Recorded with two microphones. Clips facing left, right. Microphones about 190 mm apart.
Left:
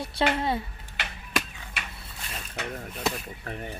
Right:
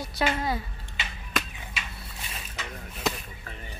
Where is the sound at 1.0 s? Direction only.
65° left (ahead or behind).